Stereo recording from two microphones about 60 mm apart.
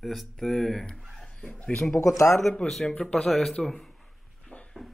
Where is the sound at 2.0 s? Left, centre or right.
Left.